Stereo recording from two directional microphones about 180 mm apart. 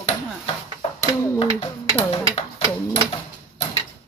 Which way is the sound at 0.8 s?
35° left (ahead or behind).